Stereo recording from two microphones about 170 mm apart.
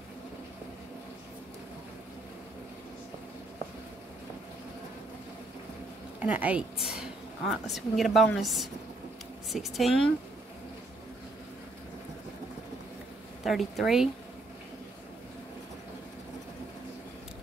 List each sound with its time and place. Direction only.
6.1 s a woman's voice: 10° right (ahead or behind)
13.4 s a woman's voice: centre (ahead or behind)